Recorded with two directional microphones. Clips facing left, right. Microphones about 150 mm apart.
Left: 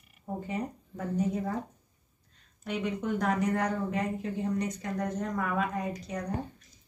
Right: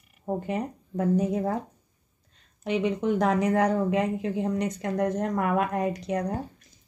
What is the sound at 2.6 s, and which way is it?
Speech, 90° right.